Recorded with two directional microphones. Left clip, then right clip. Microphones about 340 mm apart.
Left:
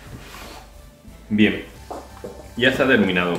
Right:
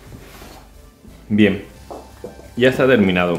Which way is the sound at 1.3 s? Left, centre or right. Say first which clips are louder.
Right 3 dB; right.